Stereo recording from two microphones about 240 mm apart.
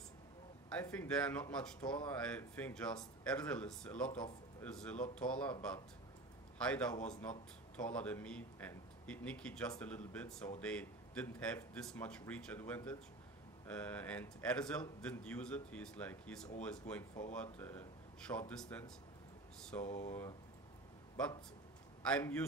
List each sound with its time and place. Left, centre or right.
0.7 s speech: centre
19.8 s speech: left
20.1 s speech: centre
22.0 s speech: centre